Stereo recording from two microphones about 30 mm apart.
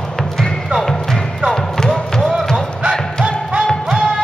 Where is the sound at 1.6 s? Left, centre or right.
Centre.